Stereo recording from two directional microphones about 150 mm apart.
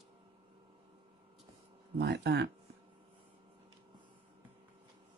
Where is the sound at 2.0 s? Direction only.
90° right.